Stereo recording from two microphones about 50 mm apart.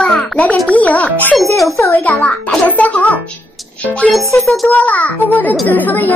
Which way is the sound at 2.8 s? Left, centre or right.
Left.